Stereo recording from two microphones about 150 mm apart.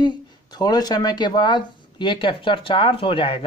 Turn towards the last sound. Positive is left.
turn(degrees=35)  # may be behind; listen again after turning